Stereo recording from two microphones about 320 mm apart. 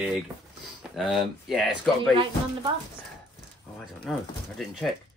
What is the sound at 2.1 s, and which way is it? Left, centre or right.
Speech, centre.